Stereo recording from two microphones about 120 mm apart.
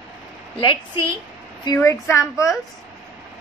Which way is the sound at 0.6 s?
45° left (ahead or behind).